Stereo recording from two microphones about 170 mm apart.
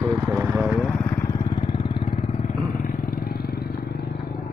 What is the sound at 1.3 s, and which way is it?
Vehicle, 20° left (ahead or behind).